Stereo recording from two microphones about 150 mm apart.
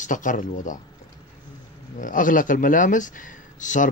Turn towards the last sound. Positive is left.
turn(degrees=60)  # may be behind; listen again after turning